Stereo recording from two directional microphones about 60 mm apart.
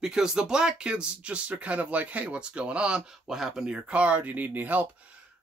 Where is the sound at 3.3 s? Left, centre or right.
Centre.